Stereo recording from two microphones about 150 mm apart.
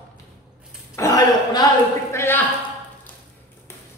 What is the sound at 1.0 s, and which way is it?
Speech, 25° left (ahead or behind).